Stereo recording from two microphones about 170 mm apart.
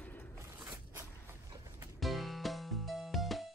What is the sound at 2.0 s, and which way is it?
Music, centre (ahead or behind).